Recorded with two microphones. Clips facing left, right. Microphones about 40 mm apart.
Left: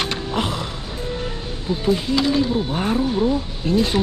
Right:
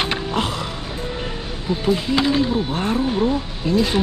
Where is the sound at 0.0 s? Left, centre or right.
Centre.